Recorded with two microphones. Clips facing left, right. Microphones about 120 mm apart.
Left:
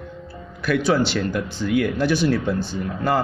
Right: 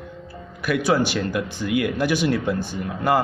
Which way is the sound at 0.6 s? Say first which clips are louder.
Left 1 dB; 15° right (ahead or behind).